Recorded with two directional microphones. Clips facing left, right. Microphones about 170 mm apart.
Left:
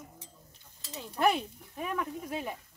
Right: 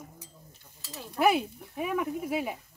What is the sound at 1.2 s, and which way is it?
Speech, 10° right (ahead or behind).